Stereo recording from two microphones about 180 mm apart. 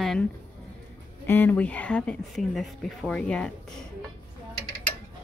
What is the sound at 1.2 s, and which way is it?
Speech, 10° left (ahead or behind).